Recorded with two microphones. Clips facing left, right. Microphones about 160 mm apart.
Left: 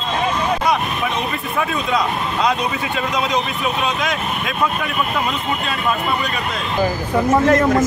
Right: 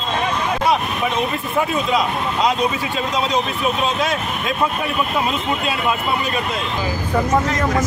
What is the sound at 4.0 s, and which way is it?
Speech, 30° right (ahead or behind).